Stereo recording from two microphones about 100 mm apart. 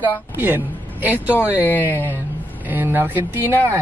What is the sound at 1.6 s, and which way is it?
Speech, 20° left (ahead or behind).